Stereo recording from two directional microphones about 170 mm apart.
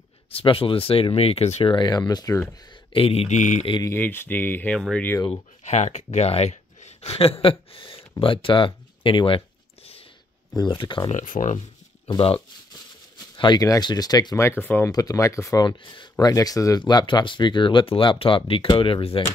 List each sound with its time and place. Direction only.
0.3 s speech: 35° left (ahead or behind)
2.9 s speech: 35° left (ahead or behind)
3.8 s speech: 15° left (ahead or behind)
4.7 s speech: centre (ahead or behind)
5.2 s speech: 40° left (ahead or behind)
10.5 s speech: 25° left (ahead or behind)
11.1 s speech: 50° left (ahead or behind)
12.1 s speech: 30° left (ahead or behind)
13.4 s speech: 25° left (ahead or behind)